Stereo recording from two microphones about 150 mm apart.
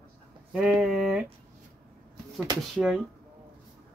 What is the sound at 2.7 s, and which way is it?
Speech, 5° right (ahead or behind).